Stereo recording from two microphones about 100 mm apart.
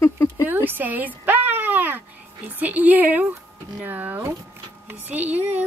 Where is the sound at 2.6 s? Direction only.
15° right (ahead or behind).